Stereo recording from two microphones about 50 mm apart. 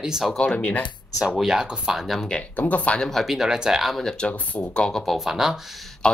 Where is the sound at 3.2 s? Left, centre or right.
Centre.